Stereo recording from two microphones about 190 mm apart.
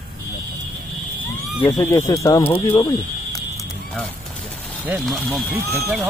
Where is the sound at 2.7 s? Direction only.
15° left (ahead or behind).